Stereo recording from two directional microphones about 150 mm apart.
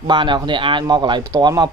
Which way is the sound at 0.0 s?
30° right (ahead or behind).